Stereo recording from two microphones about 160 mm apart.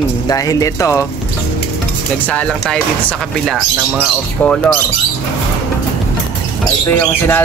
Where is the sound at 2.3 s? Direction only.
5° left (ahead or behind).